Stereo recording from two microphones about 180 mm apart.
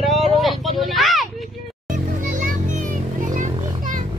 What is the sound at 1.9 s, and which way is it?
Music, 45° right (ahead or behind).